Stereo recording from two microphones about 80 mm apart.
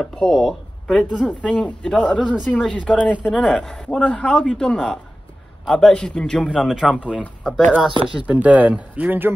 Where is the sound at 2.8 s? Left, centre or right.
Centre.